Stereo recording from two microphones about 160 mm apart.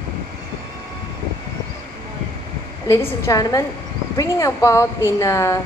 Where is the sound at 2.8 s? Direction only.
15° left (ahead or behind).